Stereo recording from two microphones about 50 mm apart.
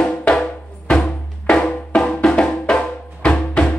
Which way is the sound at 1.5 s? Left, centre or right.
Centre.